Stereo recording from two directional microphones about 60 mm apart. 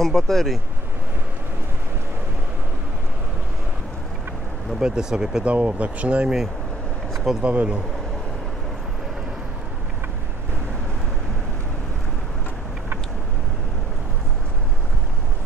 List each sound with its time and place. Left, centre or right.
0.0 s speech: centre
4.7 s speech: centre
5.4 s speech: right
7.4 s speech: centre